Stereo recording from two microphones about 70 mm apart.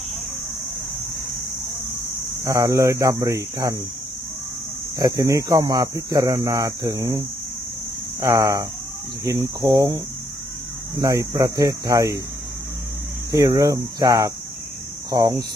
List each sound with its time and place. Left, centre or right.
2.4 s speech: right
4.9 s speech: right
8.2 s speech: right
9.2 s speech: right
11.0 s speech: right
11.3 s speech: right
13.3 s speech: right
15.0 s speech: right